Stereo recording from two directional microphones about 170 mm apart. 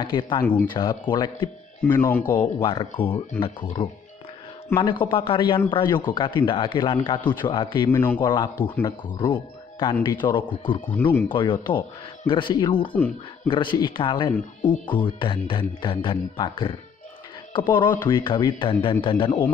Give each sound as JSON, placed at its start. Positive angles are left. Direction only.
{"t": 0.0, "sound": "a man's voice", "side_deg": 25}
{"t": 0.4, "sound": "speech", "side_deg": 10}
{"t": 0.7, "sound": "a man's voice", "side_deg": 25}
{"t": 1.9, "sound": "speech", "side_deg": 10}
{"t": 2.6, "sound": "a man's voice", "side_deg": 30}
{"t": 7.9, "sound": "speech", "side_deg": 10}
{"t": 8.2, "sound": "a man's voice", "side_deg": 25}
{"t": 10.9, "sound": "speech", "side_deg": 10}
{"t": 11.2, "sound": "a man's voice", "side_deg": 30}